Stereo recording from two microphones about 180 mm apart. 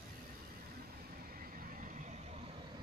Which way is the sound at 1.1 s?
55° right (ahead or behind).